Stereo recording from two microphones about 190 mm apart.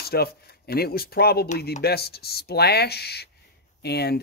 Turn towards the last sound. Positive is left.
turn(degrees=60)  # may be behind; listen again after turning